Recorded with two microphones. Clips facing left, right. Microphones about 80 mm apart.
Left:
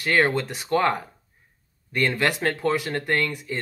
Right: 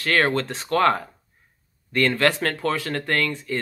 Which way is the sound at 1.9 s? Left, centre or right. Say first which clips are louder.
Right 3 dB; centre.